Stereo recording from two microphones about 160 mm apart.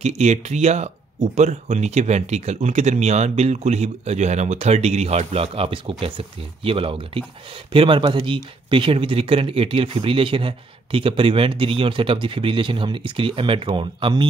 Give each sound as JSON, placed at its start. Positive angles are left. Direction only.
{"t": 0.0, "sound": "speech", "side_deg": -45}